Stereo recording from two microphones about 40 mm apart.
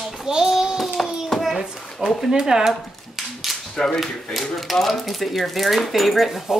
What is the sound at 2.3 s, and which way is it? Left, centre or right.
Speech, centre.